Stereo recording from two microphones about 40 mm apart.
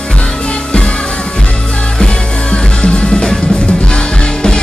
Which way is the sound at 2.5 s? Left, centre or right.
Left.